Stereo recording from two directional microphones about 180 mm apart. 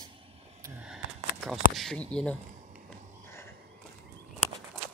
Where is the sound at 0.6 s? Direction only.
5° right (ahead or behind).